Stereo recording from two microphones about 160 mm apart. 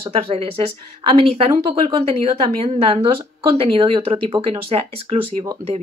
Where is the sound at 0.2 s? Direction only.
35° right (ahead or behind).